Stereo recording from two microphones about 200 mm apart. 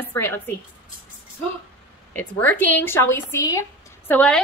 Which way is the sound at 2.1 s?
10° left (ahead or behind).